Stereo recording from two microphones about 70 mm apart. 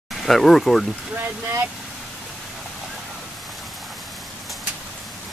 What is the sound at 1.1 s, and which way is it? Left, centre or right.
Speech, right.